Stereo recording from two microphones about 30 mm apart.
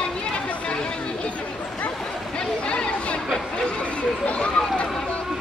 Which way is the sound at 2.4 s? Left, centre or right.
Left.